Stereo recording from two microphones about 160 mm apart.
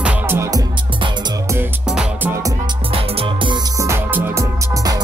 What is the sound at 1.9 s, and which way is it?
Music, 5° right (ahead or behind).